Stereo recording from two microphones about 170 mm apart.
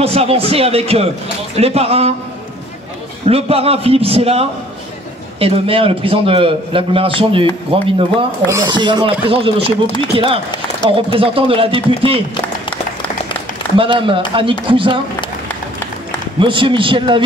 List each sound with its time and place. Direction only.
0.0 s a man's voice: 35° right (ahead or behind)
3.3 s a man's voice: 35° right (ahead or behind)
13.7 s a man's voice: 30° right (ahead or behind)
16.3 s a man's voice: 30° right (ahead or behind)